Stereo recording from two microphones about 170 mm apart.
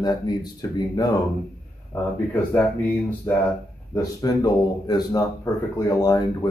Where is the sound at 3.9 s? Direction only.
20° left (ahead or behind).